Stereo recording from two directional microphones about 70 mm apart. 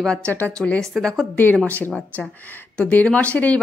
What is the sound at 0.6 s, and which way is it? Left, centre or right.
Speech, centre.